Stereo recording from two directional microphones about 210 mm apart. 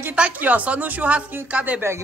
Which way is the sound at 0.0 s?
5° right (ahead or behind).